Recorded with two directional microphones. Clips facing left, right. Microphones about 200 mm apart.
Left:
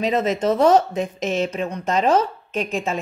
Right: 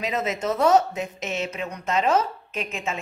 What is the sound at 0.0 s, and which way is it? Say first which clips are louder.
Speech: left 6 dB; 30° left (ahead or behind).